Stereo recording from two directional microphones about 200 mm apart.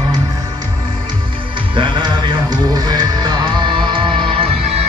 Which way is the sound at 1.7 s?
25° right (ahead or behind).